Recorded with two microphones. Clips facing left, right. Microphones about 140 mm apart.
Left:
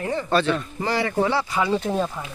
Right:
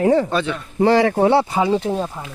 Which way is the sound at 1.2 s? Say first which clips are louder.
Right 7 dB; 60° right (ahead or behind).